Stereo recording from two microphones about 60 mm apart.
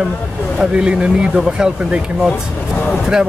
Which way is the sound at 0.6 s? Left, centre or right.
Centre.